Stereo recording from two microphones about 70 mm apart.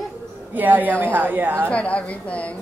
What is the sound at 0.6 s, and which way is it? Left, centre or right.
A woman's voice, right.